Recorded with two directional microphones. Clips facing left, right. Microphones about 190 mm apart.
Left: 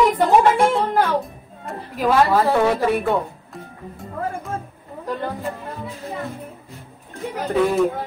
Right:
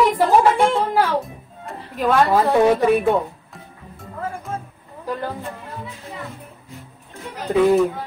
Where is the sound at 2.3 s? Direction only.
20° right (ahead or behind).